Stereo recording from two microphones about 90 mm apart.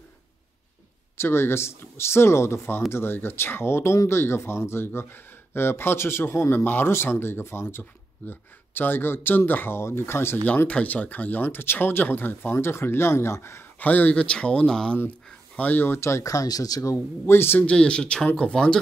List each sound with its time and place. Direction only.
1.1 s speech: 30° left (ahead or behind)
13.8 s speech: 15° left (ahead or behind)